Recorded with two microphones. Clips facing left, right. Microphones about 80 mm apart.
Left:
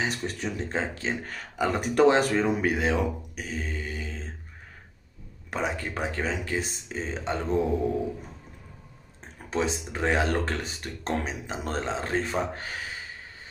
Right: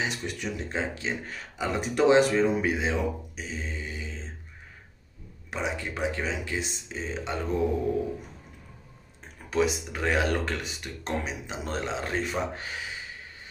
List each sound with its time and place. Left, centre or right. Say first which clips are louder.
0.0 s speech: left 2 dB; left
5.5 s speech: left 2 dB; left
9.5 s speech: right 2 dB; left